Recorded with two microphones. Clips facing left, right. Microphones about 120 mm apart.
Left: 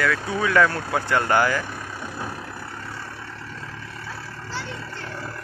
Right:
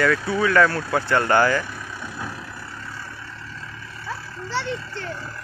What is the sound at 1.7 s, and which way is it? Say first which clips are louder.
Vehicle: left 1 dB; 45° left (ahead or behind).